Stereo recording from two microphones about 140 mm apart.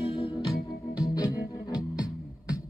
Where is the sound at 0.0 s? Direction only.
40° left (ahead or behind).